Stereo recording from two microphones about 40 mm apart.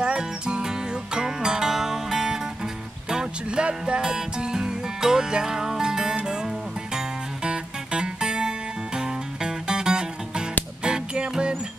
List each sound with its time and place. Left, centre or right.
0.0 s music: right
3.4 s music: right